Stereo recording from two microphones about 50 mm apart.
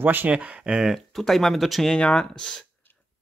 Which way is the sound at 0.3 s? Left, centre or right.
Right.